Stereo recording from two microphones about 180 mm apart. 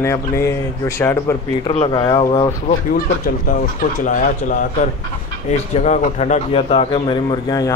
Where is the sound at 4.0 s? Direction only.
45° left (ahead or behind).